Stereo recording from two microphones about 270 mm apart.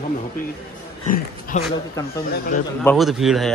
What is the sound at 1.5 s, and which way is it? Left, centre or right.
Speech, left.